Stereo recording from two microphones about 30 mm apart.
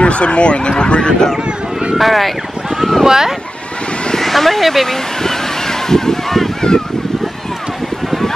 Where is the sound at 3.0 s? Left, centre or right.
Centre.